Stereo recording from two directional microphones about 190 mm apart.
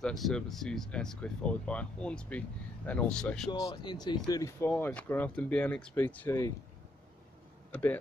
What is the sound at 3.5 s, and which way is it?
Speech, 25° left (ahead or behind).